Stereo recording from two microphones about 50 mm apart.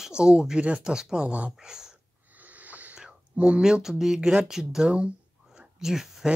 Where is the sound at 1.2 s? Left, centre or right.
Right.